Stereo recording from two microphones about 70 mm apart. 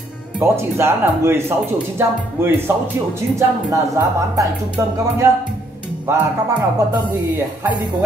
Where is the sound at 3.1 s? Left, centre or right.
Right.